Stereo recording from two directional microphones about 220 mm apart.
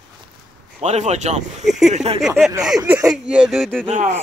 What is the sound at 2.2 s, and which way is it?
Speech, centre (ahead or behind).